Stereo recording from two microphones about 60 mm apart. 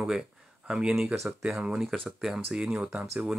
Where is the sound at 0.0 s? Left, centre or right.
Centre.